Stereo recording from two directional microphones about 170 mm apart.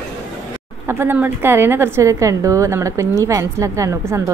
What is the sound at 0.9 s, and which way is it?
A woman's voice, 10° right (ahead or behind).